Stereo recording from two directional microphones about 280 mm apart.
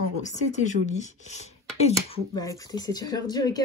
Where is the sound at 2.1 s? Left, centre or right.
Centre.